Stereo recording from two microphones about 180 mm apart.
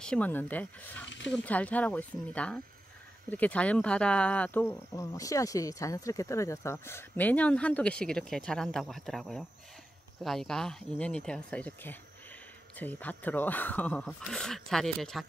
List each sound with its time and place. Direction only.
0.0 s speech: 5° left (ahead or behind)
1.0 s speech: 85° left
1.4 s speech: 10° left (ahead or behind)